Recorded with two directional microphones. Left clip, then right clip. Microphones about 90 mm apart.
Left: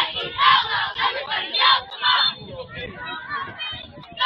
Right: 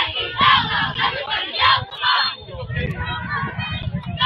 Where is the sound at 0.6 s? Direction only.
Centre (ahead or behind).